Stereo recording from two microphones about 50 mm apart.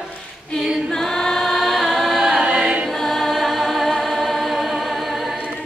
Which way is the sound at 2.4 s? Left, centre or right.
Centre.